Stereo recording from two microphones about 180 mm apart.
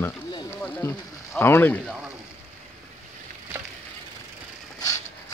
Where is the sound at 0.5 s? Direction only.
10° left (ahead or behind).